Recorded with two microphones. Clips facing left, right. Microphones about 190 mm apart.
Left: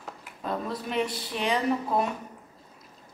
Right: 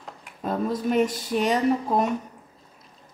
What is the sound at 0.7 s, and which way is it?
A woman's voice, 45° right (ahead or behind).